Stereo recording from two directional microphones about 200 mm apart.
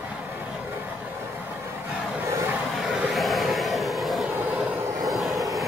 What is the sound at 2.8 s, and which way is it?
Vehicle, centre (ahead or behind).